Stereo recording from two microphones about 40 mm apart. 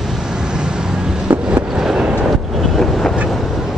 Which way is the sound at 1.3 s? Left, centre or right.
Right.